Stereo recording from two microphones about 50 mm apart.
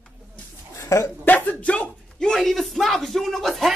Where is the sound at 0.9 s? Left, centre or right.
Left.